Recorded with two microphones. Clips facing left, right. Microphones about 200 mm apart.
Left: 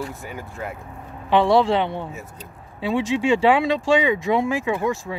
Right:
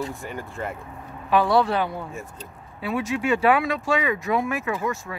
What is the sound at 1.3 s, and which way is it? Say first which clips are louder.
Speech: left 3 dB; 25° left (ahead or behind).